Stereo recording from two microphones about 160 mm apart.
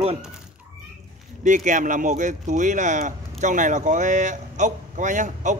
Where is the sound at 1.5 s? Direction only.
55° right (ahead or behind).